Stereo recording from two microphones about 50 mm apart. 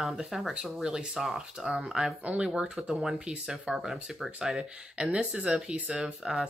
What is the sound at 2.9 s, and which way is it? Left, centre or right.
Speech, centre.